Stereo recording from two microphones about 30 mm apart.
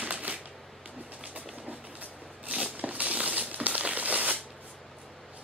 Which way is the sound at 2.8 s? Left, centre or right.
Right.